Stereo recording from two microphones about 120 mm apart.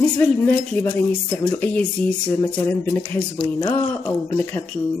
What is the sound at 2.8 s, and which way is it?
Speech, 25° left (ahead or behind).